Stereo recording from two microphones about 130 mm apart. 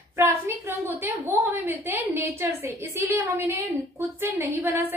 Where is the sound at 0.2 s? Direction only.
15° right (ahead or behind).